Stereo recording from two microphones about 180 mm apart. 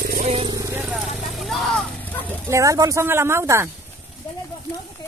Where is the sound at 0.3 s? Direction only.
30° right (ahead or behind).